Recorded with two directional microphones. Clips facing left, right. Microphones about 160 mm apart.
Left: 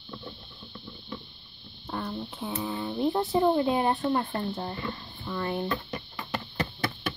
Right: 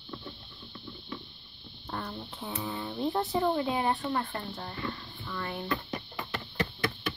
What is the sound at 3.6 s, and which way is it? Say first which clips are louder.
Speech: left 4 dB; 25° left (ahead or behind).